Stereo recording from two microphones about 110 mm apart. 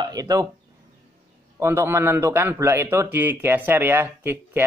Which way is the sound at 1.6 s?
25° right (ahead or behind).